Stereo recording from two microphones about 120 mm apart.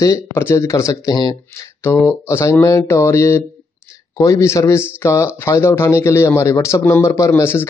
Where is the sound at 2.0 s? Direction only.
25° left (ahead or behind).